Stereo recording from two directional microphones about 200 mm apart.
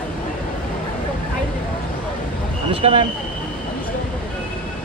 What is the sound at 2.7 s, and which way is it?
Vehicle, 25° right (ahead or behind).